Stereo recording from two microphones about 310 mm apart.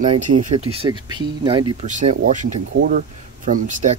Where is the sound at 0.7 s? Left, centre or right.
Centre.